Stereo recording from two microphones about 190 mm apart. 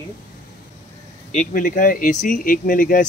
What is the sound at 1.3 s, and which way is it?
Speech, 40° left (ahead or behind).